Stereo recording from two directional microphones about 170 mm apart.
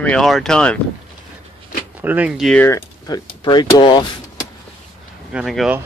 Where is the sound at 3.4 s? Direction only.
25° left (ahead or behind).